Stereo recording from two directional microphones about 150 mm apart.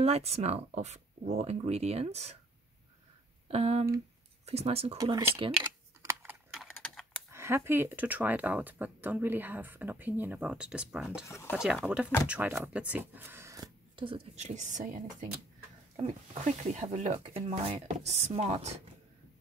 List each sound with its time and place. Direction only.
0.0 s speech: 45° right (ahead or behind)
3.4 s speech: 45° right (ahead or behind)
4.9 s speech: 25° right (ahead or behind)
5.6 s typing: 15° right (ahead or behind)
6.5 s typing: centre (ahead or behind)
7.2 s speech: 15° right (ahead or behind)
11.2 s speech: 20° left (ahead or behind)
11.5 s speech: 5° right (ahead or behind)
13.9 s speech: 35° right (ahead or behind); by 17.2 s 50° right (ahead or behind)
17.2 s speech: 40° right (ahead or behind)